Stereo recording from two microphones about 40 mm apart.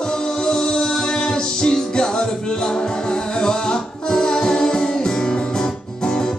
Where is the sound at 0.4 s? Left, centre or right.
Centre.